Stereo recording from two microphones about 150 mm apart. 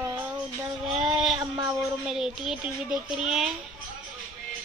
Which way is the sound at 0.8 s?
Centre (ahead or behind).